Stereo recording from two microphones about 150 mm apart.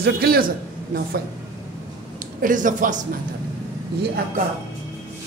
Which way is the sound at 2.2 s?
60° right (ahead or behind).